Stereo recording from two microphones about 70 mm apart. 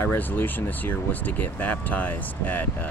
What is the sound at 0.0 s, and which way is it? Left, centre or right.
Speech, left.